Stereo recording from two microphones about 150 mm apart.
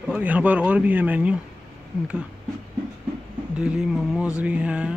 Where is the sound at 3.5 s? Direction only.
5° right (ahead or behind).